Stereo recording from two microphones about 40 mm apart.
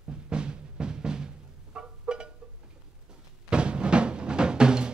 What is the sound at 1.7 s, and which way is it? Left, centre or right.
Music, right.